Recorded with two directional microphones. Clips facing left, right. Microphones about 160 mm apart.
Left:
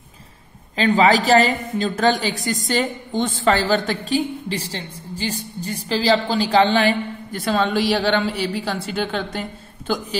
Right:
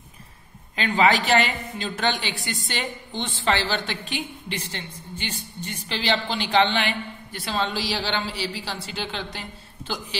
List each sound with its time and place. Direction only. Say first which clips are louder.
0.7 s a woman's voice: left 5 dB; 35° left (ahead or behind)